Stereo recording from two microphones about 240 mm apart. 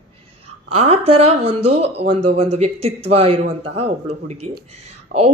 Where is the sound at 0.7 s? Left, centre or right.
Right.